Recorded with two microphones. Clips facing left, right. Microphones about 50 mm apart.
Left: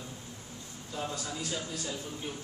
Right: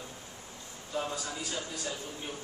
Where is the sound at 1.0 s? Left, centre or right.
Centre.